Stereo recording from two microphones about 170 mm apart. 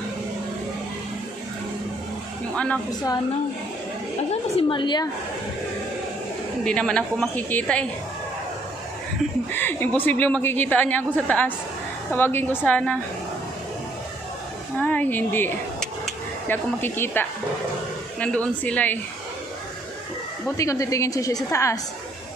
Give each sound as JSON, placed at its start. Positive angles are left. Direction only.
{"t": 2.5, "sound": "a woman's voice", "side_deg": 5}
{"t": 4.3, "sound": "a woman's voice", "side_deg": 30}
{"t": 6.6, "sound": "a woman's voice", "side_deg": 5}
{"t": 9.5, "sound": "a woman's voice", "side_deg": 10}
{"t": 14.8, "sound": "a woman's voice", "side_deg": 10}
{"t": 20.5, "sound": "a woman's voice", "side_deg": 20}